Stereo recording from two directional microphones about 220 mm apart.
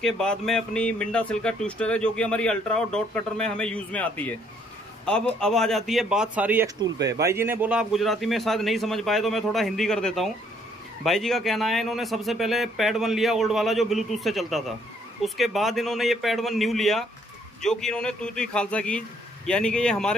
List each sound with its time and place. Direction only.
0.0 s speech: 5° left (ahead or behind)